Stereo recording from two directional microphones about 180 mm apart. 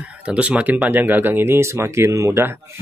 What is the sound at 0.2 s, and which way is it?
Speech, 5° right (ahead or behind).